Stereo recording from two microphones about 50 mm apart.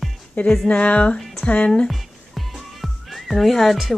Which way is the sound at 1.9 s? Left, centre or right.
Centre.